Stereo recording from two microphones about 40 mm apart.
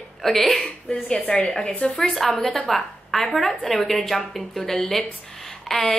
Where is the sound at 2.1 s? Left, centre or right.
Centre.